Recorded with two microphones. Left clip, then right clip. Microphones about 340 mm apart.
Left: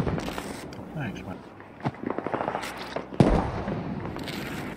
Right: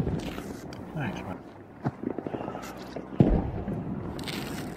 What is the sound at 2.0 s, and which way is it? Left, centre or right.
Fireworks, left.